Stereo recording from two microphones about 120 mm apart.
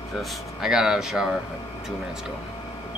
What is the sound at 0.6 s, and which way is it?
Speech, 5° right (ahead or behind).